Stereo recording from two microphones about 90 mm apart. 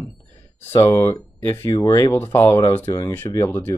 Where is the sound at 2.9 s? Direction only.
35° left (ahead or behind).